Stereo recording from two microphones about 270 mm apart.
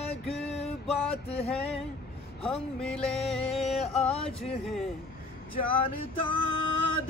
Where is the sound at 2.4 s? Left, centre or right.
Centre.